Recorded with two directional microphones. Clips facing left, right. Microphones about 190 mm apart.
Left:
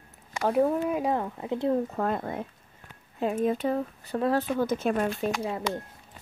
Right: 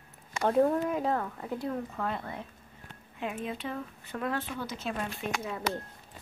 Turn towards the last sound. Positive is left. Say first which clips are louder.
# left 5 dB
turn(degrees=30)  # may be behind; listen again after turning